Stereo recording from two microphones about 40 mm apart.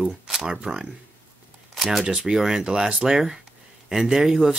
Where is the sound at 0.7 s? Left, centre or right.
Centre.